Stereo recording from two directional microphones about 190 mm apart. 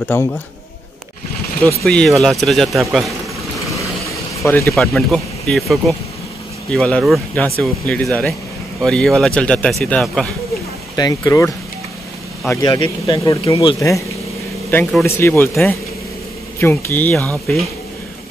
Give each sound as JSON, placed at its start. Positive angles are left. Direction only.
{"t": 0.1, "sound": "speech", "side_deg": 10}
{"t": 1.8, "sound": "a man's voice", "side_deg": 0}
{"t": 4.5, "sound": "speech", "side_deg": 15}
{"t": 4.7, "sound": "a man's voice", "side_deg": 0}
{"t": 11.0, "sound": "speech", "side_deg": 20}
{"t": 14.7, "sound": "a man's voice", "side_deg": 5}